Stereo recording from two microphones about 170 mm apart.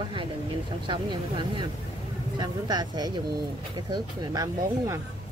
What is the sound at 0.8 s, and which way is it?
Speech, 30° right (ahead or behind).